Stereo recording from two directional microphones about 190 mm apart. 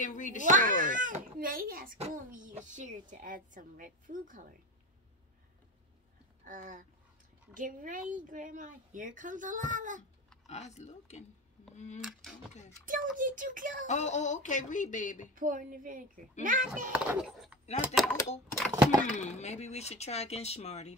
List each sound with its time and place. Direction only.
0.0 s speech: 40° left (ahead or behind)
0.5 s a woman's voice: 45° right (ahead or behind)
2.0 s a woman's voice: 40° right (ahead or behind)
6.4 s a woman's voice: 45° right (ahead or behind)
10.4 s speech: 35° left (ahead or behind)
12.0 s speech: centre (ahead or behind)
12.8 s a woman's voice: 45° right (ahead or behind)
13.8 s speech: 40° left (ahead or behind)
15.3 s a woman's voice: 45° right (ahead or behind)
16.9 s speech: 5° right (ahead or behind)
19.0 s speech: 35° left (ahead or behind)